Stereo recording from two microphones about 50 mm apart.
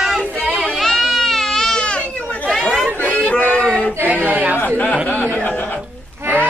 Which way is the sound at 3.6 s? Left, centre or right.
Centre.